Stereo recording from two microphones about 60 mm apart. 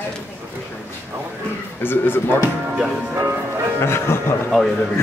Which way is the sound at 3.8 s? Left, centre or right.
Left.